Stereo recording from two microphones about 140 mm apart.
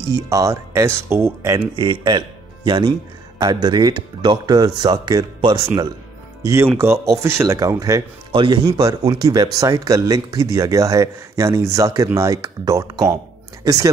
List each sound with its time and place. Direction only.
0.0 s speech: 25° right (ahead or behind)
1.8 s speech: 30° right (ahead or behind)
6.4 s speech: 20° right (ahead or behind)
8.3 s speech: 35° right (ahead or behind)
8.6 s speech: 25° right (ahead or behind)